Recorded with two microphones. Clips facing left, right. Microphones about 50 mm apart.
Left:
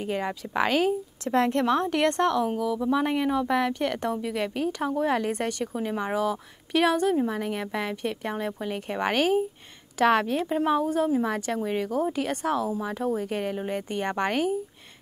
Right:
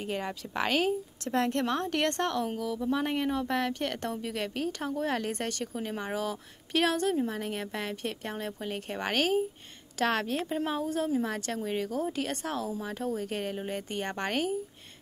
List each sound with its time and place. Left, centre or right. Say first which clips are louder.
0.0 s a woman's voice: left 5 dB; centre